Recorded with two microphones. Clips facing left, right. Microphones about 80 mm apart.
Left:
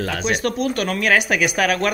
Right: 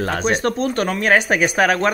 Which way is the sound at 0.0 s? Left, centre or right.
Right.